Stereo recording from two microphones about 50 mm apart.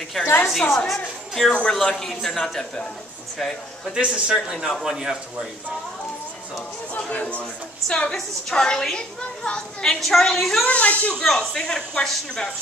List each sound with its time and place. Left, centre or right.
0.2 s a woman's voice: left
0.7 s a woman's voice: centre
3.9 s speech: centre
6.9 s speech: left
7.9 s a woman's voice: centre
9.9 s a woman's voice: centre
10.6 s speech: left
11.2 s a woman's voice: centre